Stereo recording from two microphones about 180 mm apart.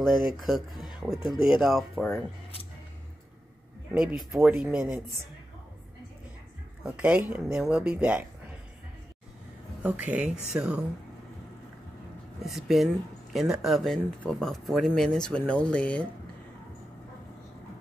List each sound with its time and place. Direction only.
0.0 s speech: 5° right (ahead or behind)
4.0 s speech: 5° right (ahead or behind)
6.8 s speech: 10° right (ahead or behind)
9.8 s speech: 10° right (ahead or behind)
12.4 s speech: centre (ahead or behind)